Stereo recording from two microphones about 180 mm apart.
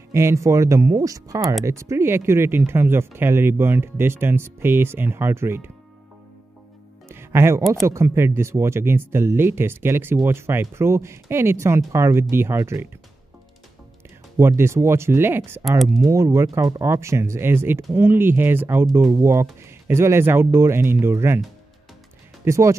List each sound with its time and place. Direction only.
0.1 s speech: 15° right (ahead or behind)
7.1 s music: 15° right (ahead or behind)
7.8 s speech: 15° right (ahead or behind)
14.4 s speech: 15° right (ahead or behind)
22.4 s speech: 15° right (ahead or behind)